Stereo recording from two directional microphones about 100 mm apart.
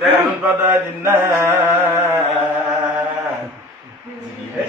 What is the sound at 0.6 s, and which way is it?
Mantra, 20° right (ahead or behind).